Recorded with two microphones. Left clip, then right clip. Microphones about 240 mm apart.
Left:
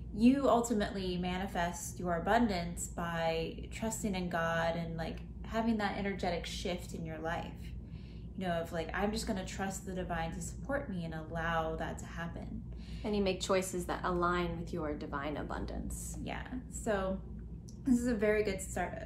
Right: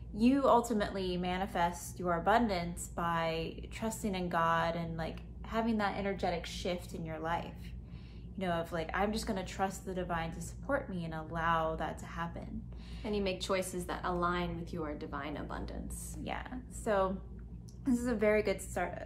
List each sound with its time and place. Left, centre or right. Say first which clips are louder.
0.1 s a woman's voice: right 1 dB; centre
13.0 s a woman's voice: left 1 dB; centre
16.3 s a woman's voice: right 2 dB; centre